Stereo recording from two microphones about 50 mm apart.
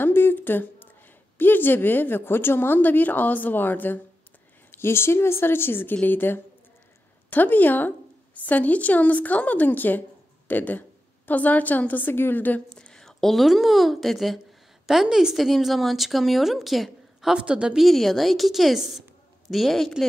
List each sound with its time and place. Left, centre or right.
0.0 s a woman's voice: left
2.8 s a woman's voice: left
4.6 s a woman's voice: left
12.6 s a woman's voice: centre
17.4 s a woman's voice: centre
17.7 s speech: centre